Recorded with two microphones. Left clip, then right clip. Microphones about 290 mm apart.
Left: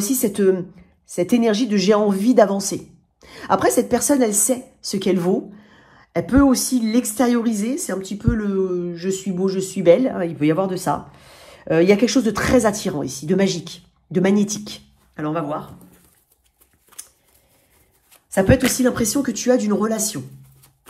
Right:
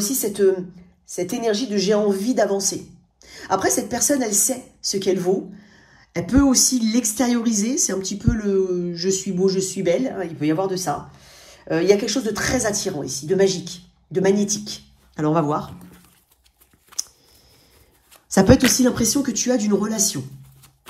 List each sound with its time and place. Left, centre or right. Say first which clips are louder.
0.0 s a woman's voice: even; centre
10.2 s speech: left 3 dB; centre
15.1 s speech: right 4 dB; centre
18.4 s a woman's voice: right 1 dB; centre